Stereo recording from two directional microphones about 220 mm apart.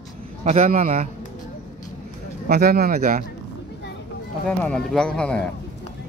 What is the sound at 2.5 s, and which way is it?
Speech, 45° right (ahead or behind).